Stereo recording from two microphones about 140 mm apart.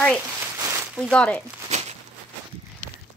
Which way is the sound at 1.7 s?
55° right (ahead or behind).